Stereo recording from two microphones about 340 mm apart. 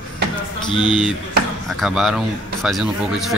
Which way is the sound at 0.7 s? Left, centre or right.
Centre.